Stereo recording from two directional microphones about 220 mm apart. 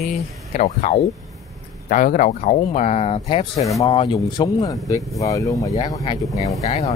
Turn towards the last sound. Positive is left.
turn(degrees=30)  # may be behind; listen again after turning